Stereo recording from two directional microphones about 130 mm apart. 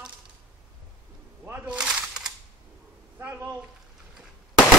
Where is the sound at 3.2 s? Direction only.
15° right (ahead or behind).